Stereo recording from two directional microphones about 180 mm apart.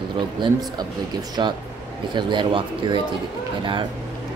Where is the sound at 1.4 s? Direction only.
25° right (ahead or behind).